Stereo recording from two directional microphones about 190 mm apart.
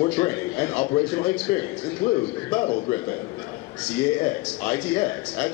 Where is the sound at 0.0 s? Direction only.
15° left (ahead or behind).